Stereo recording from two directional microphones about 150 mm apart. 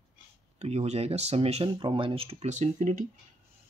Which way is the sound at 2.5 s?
55° right (ahead or behind).